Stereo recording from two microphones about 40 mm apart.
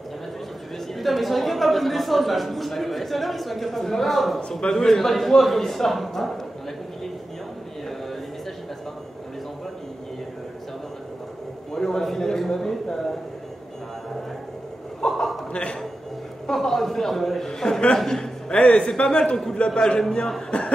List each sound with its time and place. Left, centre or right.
0.9 s speech: centre
4.4 s a man's voice: centre
4.7 s speech: centre
11.7 s a sound: centre
15.0 s chuckle: centre
15.5 s a sound: left
16.5 s speech: centre
17.9 s a sound: centre
19.0 s a man's voice: centre
19.8 s a man's voice: centre